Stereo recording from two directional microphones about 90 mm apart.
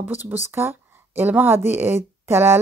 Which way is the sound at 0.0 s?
20° right (ahead or behind).